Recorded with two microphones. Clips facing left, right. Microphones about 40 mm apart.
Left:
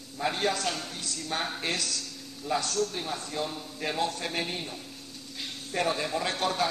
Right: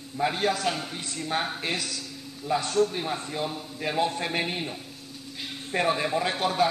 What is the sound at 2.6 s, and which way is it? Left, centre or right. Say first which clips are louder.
A man's voice: right 5 dB; right.